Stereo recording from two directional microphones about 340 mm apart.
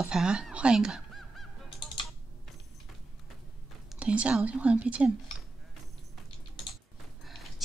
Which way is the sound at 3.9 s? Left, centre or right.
Centre.